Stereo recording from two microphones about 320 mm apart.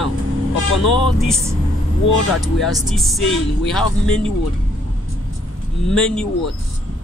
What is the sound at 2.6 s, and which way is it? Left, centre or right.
Speech, centre.